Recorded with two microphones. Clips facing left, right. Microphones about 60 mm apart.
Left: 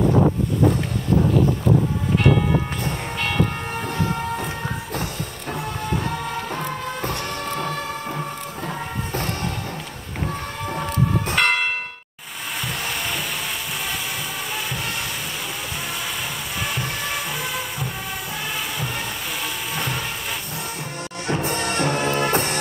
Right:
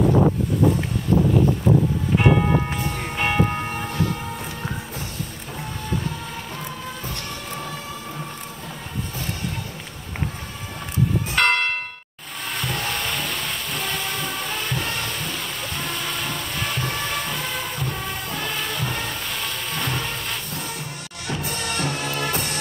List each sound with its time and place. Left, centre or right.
2.1 s vehicle: centre
5.5 s music: left
11.3 s church bell: centre
12.6 s a sound: centre
14.5 s music: centre
16.6 s music: centre
21.3 s music: left